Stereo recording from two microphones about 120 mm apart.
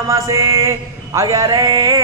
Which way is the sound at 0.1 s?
25° right (ahead or behind).